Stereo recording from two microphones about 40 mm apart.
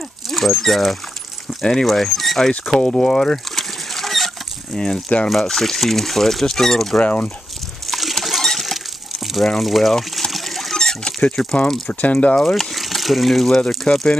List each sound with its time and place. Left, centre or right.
0.3 s speech: centre
2.7 s speech: left
3.0 s mechanisms: centre
4.7 s speech: centre
7.0 s speech: left
7.8 s a sound: centre
9.6 s speech: centre
9.9 s a sound: centre
11.2 s speech: left
12.4 s speech: centre
12.7 s a sound: centre
13.9 s speech: left